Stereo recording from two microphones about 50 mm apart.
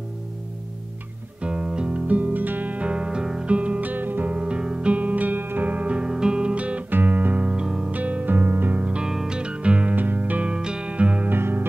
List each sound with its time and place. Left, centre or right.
1.4 s music: centre
2.0 s music: right; by 3.4 s centre
3.4 s music: right
4.3 s music: right
4.9 s music: right
6.9 s music: right
7.4 s music: centre
7.9 s music: right
8.8 s music: right
9.1 s music: centre
9.4 s music: right
10.5 s music: centre
11.2 s music: right